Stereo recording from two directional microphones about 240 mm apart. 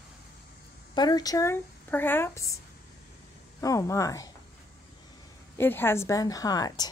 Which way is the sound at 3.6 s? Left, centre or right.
Centre.